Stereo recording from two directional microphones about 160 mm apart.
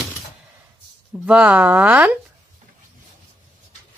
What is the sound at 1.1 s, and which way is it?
Speech, 5° right (ahead or behind).